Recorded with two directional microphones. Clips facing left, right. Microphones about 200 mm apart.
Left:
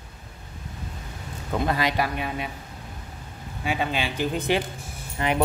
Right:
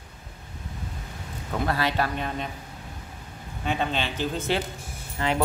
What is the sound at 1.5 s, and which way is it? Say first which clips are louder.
Speech: left 1 dB; 15° left (ahead or behind).